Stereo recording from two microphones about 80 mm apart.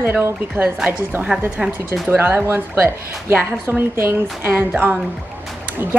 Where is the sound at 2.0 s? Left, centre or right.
Right.